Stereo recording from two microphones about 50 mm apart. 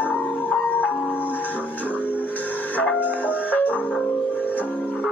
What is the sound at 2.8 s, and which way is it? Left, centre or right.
Music, left.